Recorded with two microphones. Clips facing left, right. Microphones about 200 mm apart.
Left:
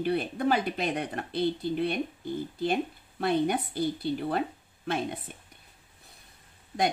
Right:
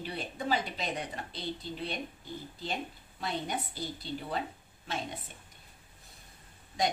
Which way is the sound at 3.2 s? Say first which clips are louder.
Left 9 dB; 60° left (ahead or behind).